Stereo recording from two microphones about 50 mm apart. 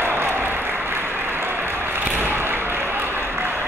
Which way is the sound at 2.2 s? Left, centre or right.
Right.